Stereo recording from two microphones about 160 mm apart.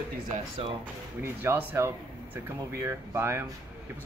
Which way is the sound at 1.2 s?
15° right (ahead or behind).